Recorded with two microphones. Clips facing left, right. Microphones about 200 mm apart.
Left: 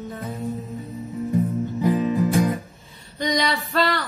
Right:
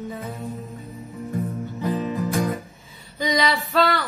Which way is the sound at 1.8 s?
15° left (ahead or behind).